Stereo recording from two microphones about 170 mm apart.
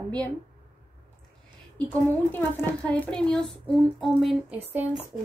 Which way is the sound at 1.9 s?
10° left (ahead or behind).